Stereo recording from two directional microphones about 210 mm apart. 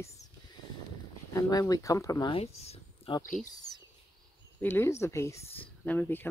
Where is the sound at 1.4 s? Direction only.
15° left (ahead or behind).